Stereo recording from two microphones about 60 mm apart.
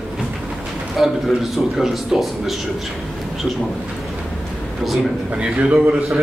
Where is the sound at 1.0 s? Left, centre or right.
Centre.